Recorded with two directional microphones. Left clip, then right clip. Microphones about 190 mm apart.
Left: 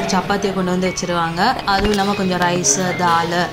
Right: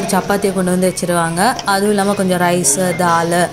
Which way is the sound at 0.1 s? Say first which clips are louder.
Right 5 dB; 25° right (ahead or behind).